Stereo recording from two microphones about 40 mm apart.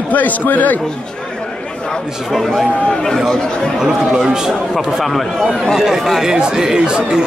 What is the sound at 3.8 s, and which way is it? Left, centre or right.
Speech, centre.